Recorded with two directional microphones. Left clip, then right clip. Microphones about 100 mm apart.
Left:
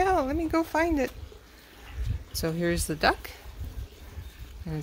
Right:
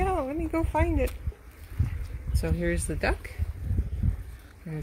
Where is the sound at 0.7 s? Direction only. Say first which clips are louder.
Even; 50° left (ahead or behind).